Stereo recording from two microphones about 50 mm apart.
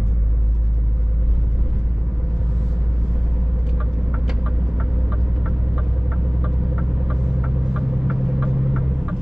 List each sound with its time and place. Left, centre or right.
6.4 s vehicle: centre